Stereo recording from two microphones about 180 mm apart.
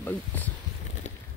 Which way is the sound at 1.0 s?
40° left (ahead or behind).